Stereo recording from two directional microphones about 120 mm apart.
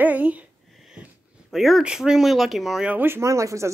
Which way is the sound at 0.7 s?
Centre (ahead or behind).